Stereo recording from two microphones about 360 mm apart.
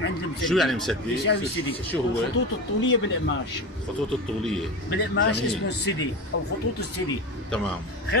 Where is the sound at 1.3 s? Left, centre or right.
Left.